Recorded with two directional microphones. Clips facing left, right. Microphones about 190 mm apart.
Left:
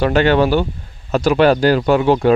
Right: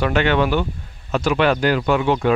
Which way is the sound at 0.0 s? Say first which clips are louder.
Left 4 dB; 35° left (ahead or behind).